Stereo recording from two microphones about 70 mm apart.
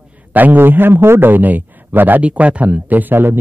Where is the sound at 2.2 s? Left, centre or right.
Centre.